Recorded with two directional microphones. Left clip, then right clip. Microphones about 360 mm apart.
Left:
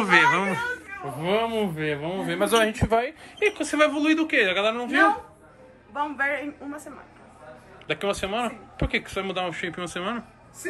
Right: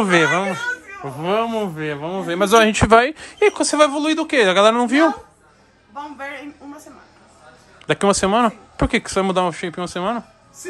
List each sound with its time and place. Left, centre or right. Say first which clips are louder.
0.0 s speech: right 3 dB; centre; by 3.6 s right
3.6 s speech: right 5 dB; centre
5.9 s speech: left 5 dB; centre
7.9 s speech: right 10 dB; right